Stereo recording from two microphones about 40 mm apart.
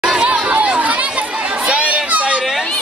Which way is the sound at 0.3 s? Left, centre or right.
Right.